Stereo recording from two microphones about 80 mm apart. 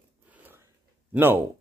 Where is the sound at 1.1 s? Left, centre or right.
Right.